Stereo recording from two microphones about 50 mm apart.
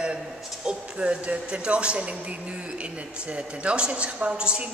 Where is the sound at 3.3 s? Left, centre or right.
Right.